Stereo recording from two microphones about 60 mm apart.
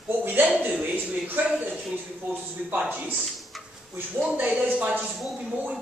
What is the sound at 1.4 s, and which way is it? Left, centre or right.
Speech, right.